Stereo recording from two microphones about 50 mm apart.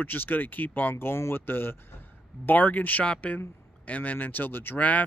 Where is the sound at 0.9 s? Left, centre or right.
Left.